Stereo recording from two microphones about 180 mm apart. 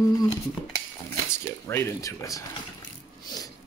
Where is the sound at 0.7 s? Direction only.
15° left (ahead or behind).